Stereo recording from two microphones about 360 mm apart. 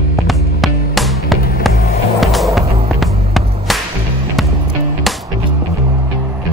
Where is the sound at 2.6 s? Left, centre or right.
Centre.